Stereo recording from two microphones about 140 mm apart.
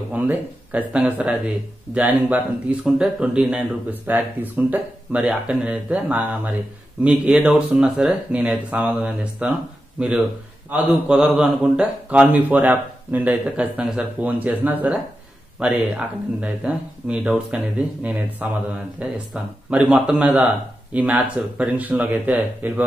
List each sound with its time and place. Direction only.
0.1 s speech: 10° right (ahead or behind)